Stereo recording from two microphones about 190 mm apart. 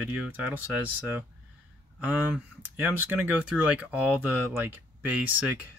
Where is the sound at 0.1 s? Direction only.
5° right (ahead or behind).